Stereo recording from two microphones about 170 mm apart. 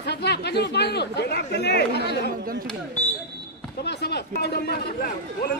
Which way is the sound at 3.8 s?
75° left (ahead or behind).